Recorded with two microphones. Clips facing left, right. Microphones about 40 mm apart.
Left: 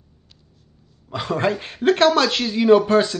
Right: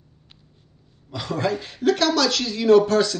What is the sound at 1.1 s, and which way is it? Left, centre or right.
Speech, left.